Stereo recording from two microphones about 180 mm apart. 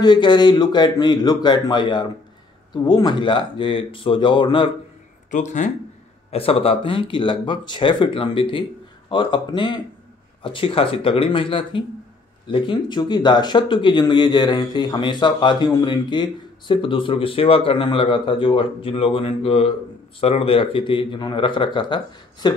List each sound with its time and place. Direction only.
0.0 s speech: 25° left (ahead or behind)
5.3 s speech: 40° left (ahead or behind); by 22.5 s 25° left (ahead or behind)